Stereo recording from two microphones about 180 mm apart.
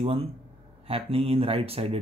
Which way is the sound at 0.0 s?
30° right (ahead or behind).